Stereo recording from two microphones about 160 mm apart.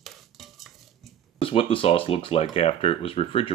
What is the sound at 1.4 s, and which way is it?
Speech, 35° left (ahead or behind).